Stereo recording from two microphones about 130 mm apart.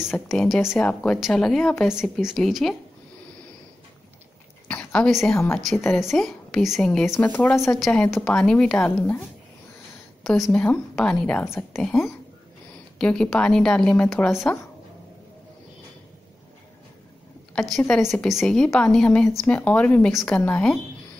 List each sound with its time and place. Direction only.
0.0 s a woman's voice: centre (ahead or behind)
4.6 s a sound: 10° left (ahead or behind)
5.3 s a woman's voice: 15° left (ahead or behind)
5.6 s a woman's voice: centre (ahead or behind)
10.2 s a woman's voice: centre (ahead or behind)
13.0 s speech: 5° left (ahead or behind)
17.7 s a woman's voice: centre (ahead or behind)
20.1 s speech: centre (ahead or behind)
20.3 s a woman's voice: 10° left (ahead or behind)